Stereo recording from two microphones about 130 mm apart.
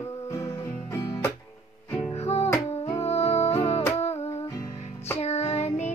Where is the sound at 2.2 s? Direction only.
55° left (ahead or behind).